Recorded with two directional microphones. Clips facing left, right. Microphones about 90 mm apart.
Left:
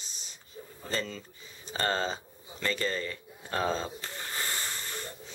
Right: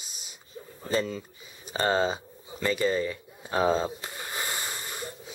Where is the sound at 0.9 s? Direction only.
10° right (ahead or behind).